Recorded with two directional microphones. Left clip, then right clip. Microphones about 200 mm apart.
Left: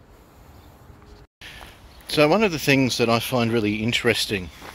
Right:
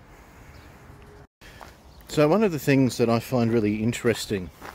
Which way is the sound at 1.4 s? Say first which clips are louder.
Left 6 dB; 5° right (ahead or behind).